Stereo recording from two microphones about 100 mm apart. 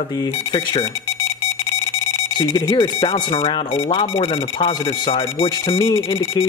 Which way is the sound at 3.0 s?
65° left (ahead or behind).